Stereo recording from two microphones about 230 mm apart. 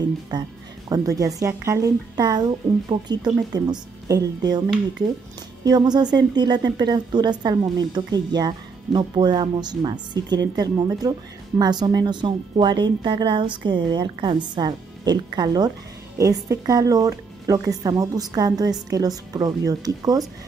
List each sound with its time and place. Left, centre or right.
0.3 s speech: centre
5.7 s speech: centre